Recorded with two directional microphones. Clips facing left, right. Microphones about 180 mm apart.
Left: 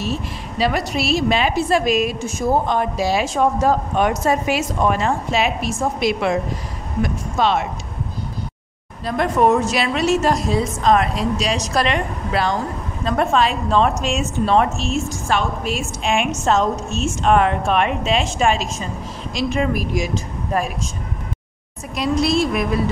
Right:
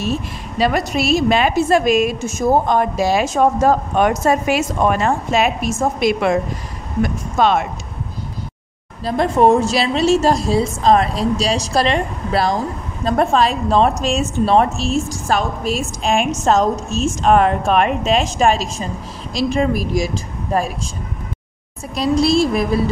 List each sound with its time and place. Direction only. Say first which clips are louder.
0.6 s a woman's voice: right 3 dB; 45° right (ahead or behind)
9.0 s a woman's voice: right 3 dB; 30° right (ahead or behind)
21.9 s a woman's voice: right 3 dB; 35° right (ahead or behind)